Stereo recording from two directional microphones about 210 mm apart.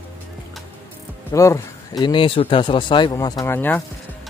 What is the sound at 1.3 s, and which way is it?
Speech, 15° left (ahead or behind).